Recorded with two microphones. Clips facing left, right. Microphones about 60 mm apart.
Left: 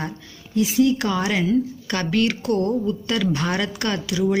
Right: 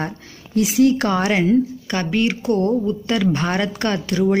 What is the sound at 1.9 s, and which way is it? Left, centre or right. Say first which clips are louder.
A woman's voice: left 2 dB; right.